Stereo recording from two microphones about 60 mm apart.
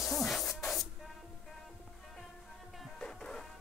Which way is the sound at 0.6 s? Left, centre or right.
Centre.